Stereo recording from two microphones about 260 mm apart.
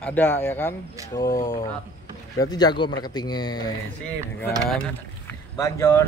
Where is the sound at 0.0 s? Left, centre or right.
Centre.